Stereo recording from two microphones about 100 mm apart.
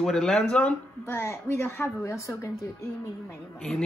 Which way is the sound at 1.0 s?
25° left (ahead or behind).